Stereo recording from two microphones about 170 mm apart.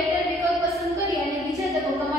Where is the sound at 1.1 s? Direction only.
Centre (ahead or behind).